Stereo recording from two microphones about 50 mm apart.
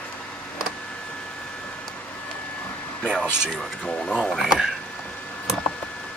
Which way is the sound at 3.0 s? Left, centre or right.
Centre.